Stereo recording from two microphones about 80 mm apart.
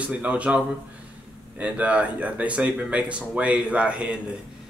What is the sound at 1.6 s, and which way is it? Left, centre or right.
Speech, centre.